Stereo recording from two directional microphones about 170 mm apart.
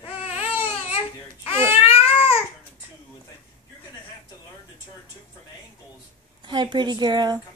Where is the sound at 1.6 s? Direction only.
15° right (ahead or behind).